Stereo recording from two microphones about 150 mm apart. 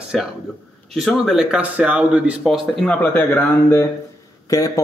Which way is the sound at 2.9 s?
10° left (ahead or behind).